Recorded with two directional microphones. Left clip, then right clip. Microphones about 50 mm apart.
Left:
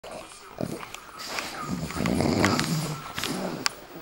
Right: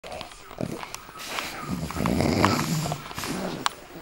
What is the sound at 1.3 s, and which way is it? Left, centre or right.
Dog, right.